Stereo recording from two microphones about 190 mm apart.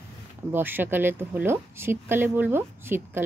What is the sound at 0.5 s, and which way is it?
Speech, 10° right (ahead or behind).